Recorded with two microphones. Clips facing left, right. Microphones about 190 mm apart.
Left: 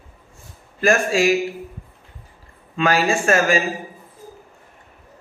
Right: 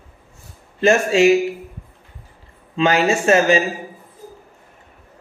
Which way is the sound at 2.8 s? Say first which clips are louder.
Right 2 dB; 25° right (ahead or behind).